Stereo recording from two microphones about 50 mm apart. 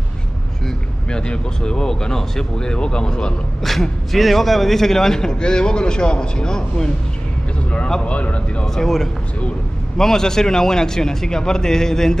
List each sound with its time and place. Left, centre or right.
1.1 s a man's voice: centre
3.6 s a man's voice: centre
8.0 s speech: left
8.7 s a man's voice: centre